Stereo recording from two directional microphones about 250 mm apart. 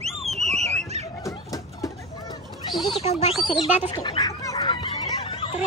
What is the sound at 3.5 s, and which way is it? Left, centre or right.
Fowl, centre.